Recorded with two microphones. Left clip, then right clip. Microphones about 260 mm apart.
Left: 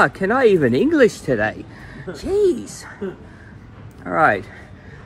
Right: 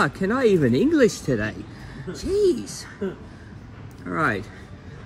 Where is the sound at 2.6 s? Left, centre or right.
Centre.